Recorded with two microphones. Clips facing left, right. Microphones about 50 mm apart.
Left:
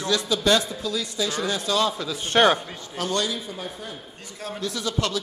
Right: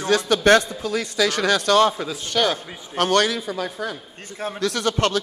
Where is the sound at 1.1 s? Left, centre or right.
Right.